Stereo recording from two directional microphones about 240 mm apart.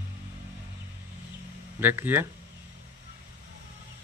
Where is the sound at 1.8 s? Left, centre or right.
Centre.